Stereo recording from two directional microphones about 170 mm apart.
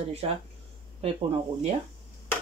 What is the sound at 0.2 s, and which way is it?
Speech, 35° right (ahead or behind).